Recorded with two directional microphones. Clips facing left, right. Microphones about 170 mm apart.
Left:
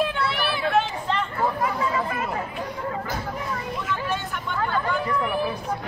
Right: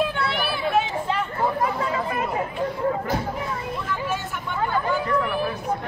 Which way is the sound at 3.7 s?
Centre (ahead or behind).